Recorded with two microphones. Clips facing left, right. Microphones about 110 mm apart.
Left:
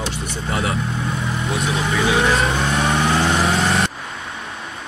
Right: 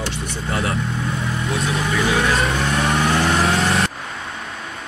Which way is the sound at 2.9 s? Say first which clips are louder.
Right 1 dB; 25° left (ahead or behind).